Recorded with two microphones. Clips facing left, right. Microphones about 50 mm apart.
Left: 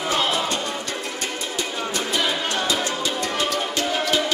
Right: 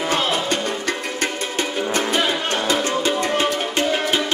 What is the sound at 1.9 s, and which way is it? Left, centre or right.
Music, right.